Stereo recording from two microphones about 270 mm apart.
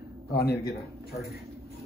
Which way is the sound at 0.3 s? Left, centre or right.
Left.